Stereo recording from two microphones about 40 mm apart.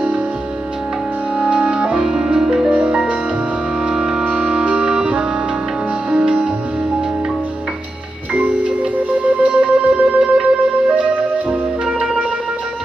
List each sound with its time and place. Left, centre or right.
1.4 s music: right
2.7 s music: right
3.8 s music: right
8.3 s music: right